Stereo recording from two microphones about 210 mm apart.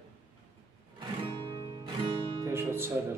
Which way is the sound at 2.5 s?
10° right (ahead or behind).